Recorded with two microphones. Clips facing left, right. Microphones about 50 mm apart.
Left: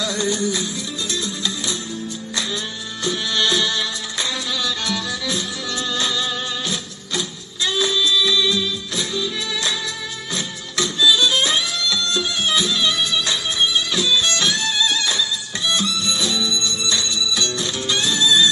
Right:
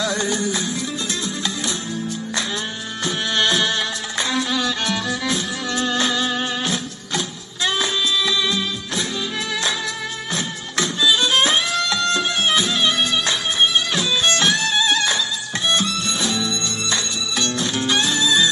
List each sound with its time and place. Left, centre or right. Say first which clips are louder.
0.0 s music: even; right
3.0 s music: right 1 dB; right